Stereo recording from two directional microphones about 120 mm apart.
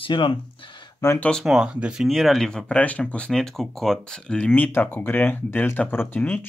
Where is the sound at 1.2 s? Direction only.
10° left (ahead or behind).